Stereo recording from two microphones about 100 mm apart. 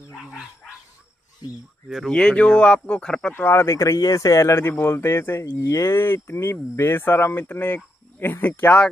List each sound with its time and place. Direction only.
0.1 s bow-wow: 5° right (ahead or behind)
1.9 s speech: 5° left (ahead or behind)
3.3 s speech: 25° left (ahead or behind)